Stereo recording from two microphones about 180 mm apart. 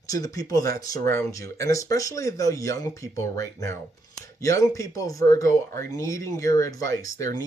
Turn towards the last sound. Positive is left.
turn(degrees=20)  # may be behind; listen again after turning